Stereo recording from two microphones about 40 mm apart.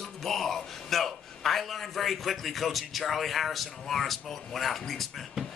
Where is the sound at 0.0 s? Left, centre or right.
Centre.